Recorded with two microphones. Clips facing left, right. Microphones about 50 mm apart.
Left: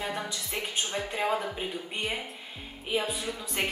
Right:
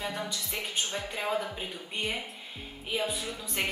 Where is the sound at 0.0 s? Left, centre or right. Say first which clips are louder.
Left 1 dB; centre.